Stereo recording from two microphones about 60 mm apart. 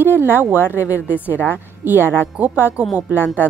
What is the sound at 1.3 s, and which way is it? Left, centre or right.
Speech, left.